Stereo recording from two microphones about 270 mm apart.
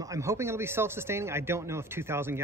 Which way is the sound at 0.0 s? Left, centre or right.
Centre.